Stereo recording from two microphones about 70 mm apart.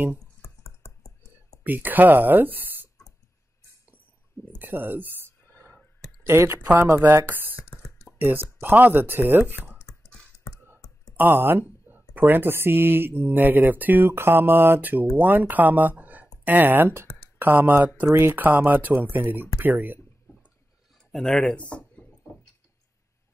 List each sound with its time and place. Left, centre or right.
0.4 s computer keyboard: left
1.6 s speech: right
4.6 s speech: right
5.5 s whispering: right
6.2 s speech: right
11.1 s speech: right
21.1 s speech: centre